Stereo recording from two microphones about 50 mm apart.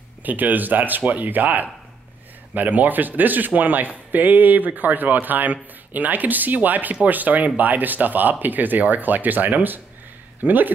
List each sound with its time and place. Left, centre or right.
0.2 s a man's voice: right